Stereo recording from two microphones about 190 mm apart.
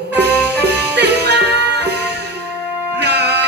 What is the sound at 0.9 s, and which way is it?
Music, 60° right (ahead or behind).